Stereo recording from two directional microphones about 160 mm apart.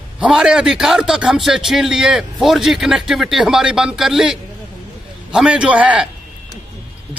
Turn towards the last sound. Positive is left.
turn(degrees=-5)  # may be behind; listen again after turning